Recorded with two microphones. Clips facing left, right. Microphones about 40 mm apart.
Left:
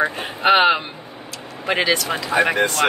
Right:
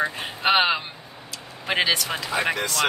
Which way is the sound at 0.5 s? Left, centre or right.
Centre.